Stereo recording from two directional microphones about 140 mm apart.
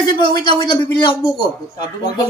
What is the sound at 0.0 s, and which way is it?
A man's voice, 35° left (ahead or behind).